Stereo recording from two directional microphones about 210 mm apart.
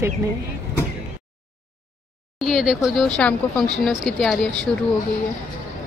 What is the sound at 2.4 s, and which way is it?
Speech, centre (ahead or behind).